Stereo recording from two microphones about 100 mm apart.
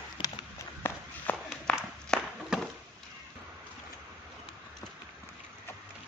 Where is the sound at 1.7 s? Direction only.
10° left (ahead or behind).